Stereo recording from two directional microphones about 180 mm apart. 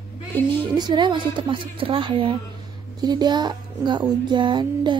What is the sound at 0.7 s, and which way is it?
Speech, 25° right (ahead or behind).